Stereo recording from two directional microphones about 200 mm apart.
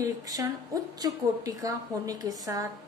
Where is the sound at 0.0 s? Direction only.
15° right (ahead or behind).